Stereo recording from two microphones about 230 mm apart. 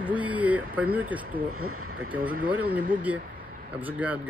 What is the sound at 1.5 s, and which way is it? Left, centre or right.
Speech, right.